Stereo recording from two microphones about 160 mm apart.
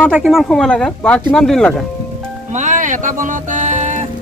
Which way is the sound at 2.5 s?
50° right (ahead or behind).